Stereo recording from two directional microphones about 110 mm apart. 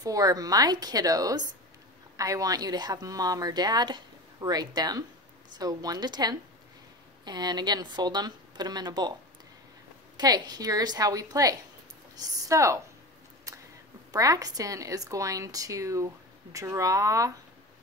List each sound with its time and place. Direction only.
0.0 s speech: 35° right (ahead or behind)
10.1 s speech: 40° right (ahead or behind)
13.5 s a sound: 30° right (ahead or behind)
14.1 s speech: 35° right (ahead or behind)